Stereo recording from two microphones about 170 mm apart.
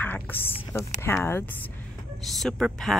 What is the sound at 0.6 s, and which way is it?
Speech, 15° left (ahead or behind).